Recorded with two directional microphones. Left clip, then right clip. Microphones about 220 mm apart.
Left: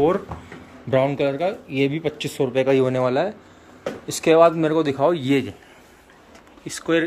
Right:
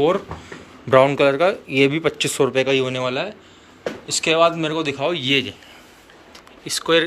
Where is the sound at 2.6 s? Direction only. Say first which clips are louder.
Left 1 dB; 25° left (ahead or behind).